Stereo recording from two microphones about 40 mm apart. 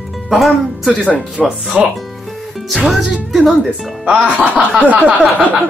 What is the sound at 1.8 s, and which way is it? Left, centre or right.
Speech, right.